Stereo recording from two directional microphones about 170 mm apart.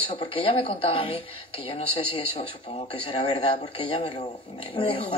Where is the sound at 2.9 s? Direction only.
30° left (ahead or behind).